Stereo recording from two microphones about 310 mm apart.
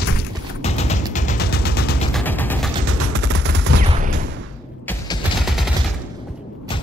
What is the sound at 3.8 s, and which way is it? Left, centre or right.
Fusillade, right.